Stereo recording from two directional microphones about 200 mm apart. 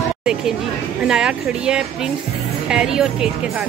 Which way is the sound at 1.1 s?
5° right (ahead or behind).